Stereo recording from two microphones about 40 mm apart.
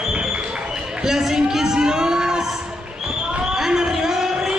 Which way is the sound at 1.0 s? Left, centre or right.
Centre.